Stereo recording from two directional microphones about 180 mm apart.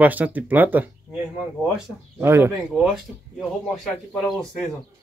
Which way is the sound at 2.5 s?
Centre (ahead or behind).